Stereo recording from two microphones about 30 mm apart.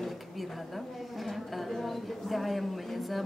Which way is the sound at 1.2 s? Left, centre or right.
Centre.